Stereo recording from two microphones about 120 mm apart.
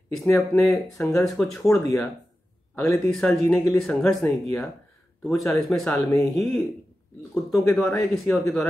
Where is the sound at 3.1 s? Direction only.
5° left (ahead or behind).